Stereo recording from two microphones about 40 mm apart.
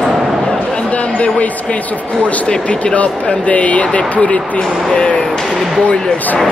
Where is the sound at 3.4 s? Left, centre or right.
Left.